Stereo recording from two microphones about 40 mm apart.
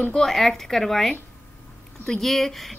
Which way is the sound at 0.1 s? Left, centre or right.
Centre.